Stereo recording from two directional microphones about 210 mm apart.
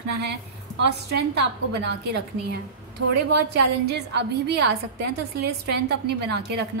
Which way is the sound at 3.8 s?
55° right (ahead or behind).